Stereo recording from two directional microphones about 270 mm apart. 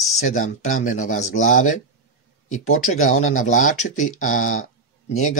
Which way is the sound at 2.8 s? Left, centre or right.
Left.